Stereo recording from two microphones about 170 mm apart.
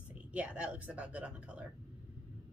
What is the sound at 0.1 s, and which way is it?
Speech, 10° right (ahead or behind).